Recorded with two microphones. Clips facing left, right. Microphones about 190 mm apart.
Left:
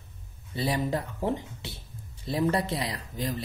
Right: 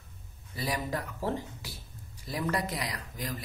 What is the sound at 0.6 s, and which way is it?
Speech, 25° left (ahead or behind).